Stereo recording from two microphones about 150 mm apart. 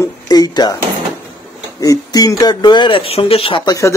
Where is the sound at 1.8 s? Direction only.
25° left (ahead or behind).